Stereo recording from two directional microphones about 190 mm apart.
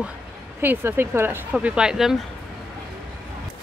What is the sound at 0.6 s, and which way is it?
Speech, 10° right (ahead or behind).